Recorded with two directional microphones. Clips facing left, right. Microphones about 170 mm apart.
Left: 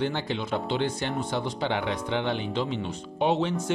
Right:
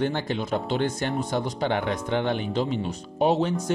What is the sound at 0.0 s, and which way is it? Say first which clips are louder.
Speech: right 2 dB; 45° right (ahead or behind).